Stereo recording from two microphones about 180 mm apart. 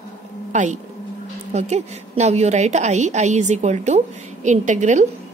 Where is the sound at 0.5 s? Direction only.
40° right (ahead or behind).